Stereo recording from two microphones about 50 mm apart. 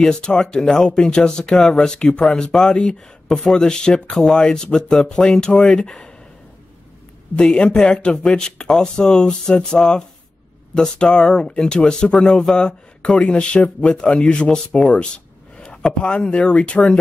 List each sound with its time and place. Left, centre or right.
0.0 s speech: centre
7.3 s speech: centre